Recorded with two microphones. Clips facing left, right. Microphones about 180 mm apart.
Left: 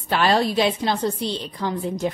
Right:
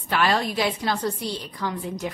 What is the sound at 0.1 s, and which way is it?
A woman's voice, 30° left (ahead or behind).